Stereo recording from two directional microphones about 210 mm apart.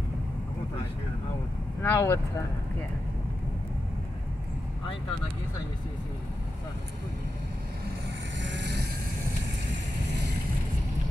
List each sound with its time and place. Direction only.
1.8 s speech: 10° left (ahead or behind)
8.4 s vehicle: 60° right (ahead or behind)